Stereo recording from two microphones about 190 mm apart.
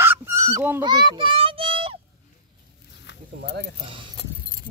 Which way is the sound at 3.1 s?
65° left (ahead or behind).